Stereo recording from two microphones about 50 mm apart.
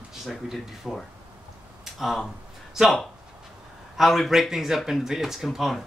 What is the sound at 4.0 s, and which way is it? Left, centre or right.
A man's voice, centre.